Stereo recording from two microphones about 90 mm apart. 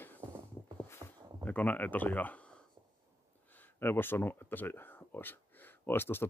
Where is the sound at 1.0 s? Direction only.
55° right (ahead or behind).